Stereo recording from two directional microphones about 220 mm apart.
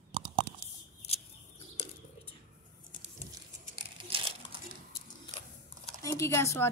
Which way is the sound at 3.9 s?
25° right (ahead or behind).